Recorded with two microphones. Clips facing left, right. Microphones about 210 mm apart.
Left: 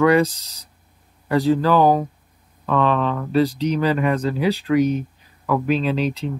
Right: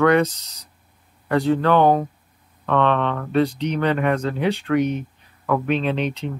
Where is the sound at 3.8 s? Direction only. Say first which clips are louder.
Right 1 dB; 5° left (ahead or behind).